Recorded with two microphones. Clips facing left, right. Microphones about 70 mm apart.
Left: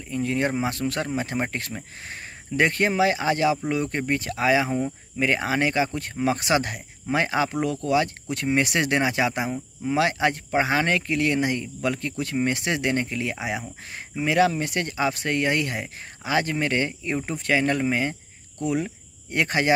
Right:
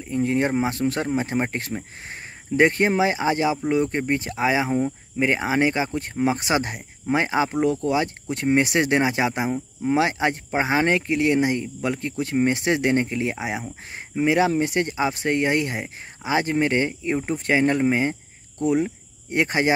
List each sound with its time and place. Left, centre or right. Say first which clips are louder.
0.0 s speech: right 3 dB; right